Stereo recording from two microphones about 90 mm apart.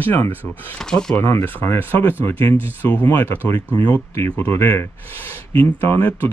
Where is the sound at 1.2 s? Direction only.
25° left (ahead or behind).